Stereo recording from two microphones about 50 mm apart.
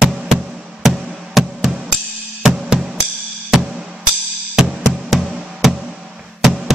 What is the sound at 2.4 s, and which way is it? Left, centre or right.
Drum kit, centre.